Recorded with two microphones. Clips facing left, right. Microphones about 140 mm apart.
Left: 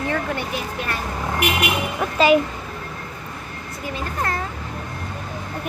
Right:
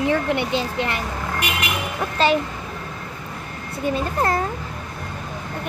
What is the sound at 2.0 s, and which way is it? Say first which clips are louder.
Speech: left 3 dB; 10° left (ahead or behind).